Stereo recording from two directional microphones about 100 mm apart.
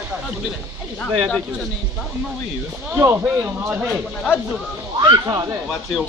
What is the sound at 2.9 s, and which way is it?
Speech, 20° right (ahead or behind).